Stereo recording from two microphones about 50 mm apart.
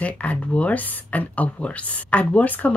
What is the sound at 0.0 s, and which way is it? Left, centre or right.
Speech, left.